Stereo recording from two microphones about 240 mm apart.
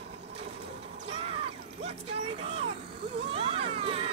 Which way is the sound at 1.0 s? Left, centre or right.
Right.